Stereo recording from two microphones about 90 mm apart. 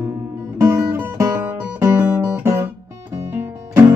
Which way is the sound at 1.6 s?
20° right (ahead or behind).